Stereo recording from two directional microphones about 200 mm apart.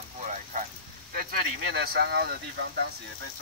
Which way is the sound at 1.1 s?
50° right (ahead or behind).